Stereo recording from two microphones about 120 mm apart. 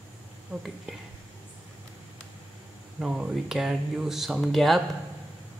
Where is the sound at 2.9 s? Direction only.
5° right (ahead or behind).